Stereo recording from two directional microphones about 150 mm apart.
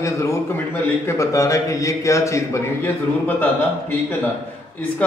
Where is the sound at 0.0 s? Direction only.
20° left (ahead or behind).